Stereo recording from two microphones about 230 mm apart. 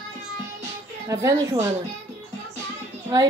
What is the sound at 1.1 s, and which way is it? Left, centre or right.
Speech, centre.